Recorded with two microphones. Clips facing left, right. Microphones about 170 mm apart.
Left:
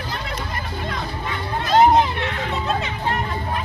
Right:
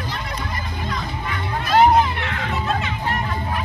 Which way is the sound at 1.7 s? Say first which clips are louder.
Even; 20° left (ahead or behind).